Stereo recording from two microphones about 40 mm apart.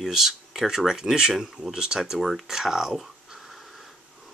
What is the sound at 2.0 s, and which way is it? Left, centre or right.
Speech, centre.